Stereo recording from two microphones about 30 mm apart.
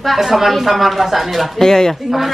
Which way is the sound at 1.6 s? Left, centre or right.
Centre.